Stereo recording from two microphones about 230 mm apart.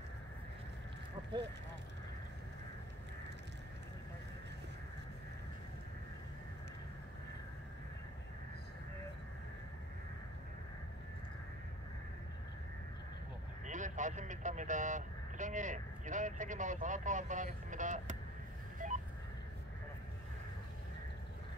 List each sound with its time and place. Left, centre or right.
13.7 s speech: right
18.8 s telephone dialing: right